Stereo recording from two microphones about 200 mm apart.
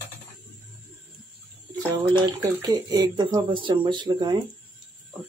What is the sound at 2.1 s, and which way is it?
Speech, 20° right (ahead or behind).